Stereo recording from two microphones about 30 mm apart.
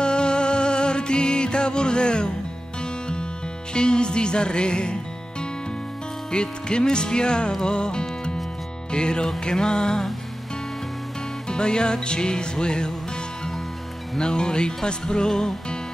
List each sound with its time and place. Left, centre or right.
0.0 s music: left
3.7 s music: left
6.3 s music: left
11.4 s music: left
14.1 s music: left